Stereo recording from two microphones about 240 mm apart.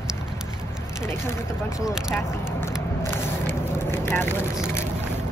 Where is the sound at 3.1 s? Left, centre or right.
Centre.